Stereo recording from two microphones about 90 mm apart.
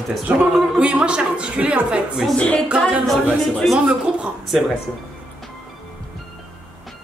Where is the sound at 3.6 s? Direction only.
5° right (ahead or behind).